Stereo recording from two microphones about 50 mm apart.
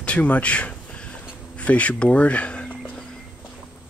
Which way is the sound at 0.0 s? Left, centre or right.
Left.